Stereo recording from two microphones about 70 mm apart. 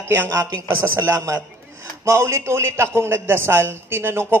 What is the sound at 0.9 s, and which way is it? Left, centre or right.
A man's voice, right.